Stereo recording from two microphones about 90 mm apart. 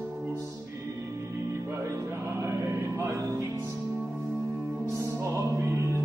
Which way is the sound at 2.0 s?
30° right (ahead or behind).